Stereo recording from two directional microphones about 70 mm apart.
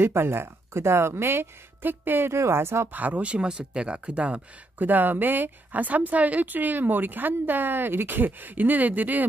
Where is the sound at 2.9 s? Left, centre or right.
Right.